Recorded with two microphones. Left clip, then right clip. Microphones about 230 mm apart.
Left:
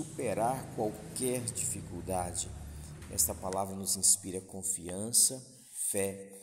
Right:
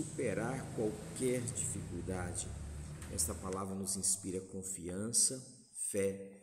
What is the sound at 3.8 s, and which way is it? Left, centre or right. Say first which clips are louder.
Speech: left 7 dB; right.